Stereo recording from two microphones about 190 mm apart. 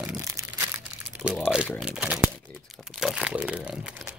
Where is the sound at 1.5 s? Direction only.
5° right (ahead or behind).